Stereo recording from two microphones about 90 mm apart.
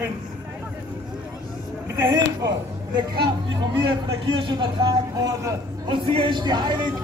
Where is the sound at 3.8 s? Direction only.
60° right (ahead or behind).